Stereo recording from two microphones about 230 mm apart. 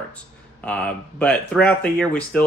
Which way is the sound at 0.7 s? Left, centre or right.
Centre.